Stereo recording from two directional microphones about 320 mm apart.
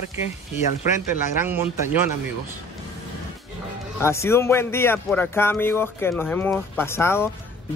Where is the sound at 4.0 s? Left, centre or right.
Centre.